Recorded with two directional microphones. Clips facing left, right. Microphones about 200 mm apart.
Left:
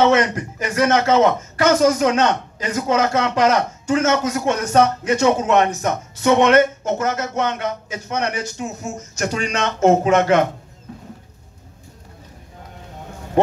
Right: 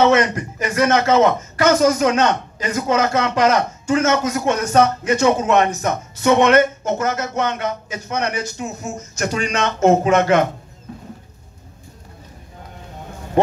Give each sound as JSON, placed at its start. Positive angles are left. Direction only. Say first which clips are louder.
{"t": 0.0, "sound": "a man's voice", "louder": "right 1 dB", "side_deg": 30}